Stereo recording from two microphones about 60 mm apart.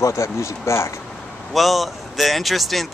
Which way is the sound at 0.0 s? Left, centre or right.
Left.